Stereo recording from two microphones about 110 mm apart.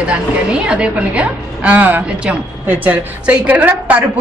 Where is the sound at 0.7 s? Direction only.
10° right (ahead or behind).